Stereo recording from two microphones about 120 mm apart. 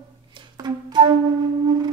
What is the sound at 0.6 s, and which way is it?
Flute, 40° right (ahead or behind).